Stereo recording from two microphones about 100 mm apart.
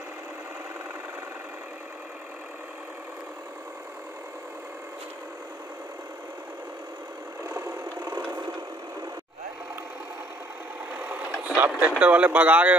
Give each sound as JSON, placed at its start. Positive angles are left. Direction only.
{"t": 7.4, "sound": "vehicle", "side_deg": -35}
{"t": 11.4, "sound": "radio", "side_deg": -15}
{"t": 12.0, "sound": "speech", "side_deg": -15}